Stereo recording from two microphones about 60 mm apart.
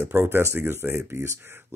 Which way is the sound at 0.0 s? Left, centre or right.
Right.